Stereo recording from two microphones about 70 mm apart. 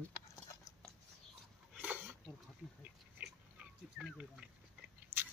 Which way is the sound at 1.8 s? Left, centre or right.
Right.